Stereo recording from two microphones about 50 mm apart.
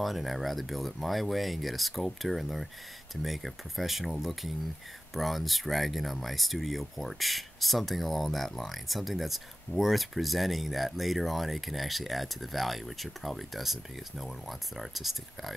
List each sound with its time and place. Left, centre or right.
0.0 s speech: centre